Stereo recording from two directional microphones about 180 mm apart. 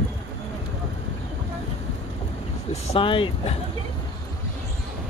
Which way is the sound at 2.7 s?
30° left (ahead or behind).